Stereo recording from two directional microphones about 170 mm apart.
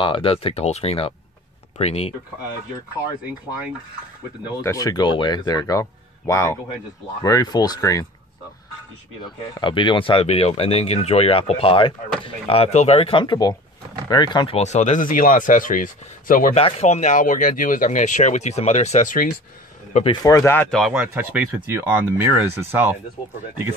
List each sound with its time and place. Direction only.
0.0 s speech: 30° left (ahead or behind)
4.6 s speech: 20° left (ahead or behind)
9.2 s speech: 30° left (ahead or behind)
14.6 s speech: 45° left (ahead or behind)
16.5 s speech: 35° left (ahead or behind)
20.1 s speech: 20° left (ahead or behind)
20.7 s speech: 5° right (ahead or behind)